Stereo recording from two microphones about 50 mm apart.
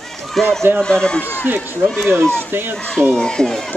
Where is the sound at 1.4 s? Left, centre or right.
Right.